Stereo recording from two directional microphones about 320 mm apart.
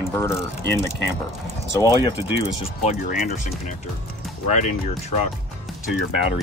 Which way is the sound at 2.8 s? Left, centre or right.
Left.